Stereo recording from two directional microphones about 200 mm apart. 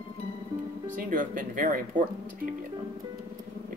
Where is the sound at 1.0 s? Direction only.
45° right (ahead or behind).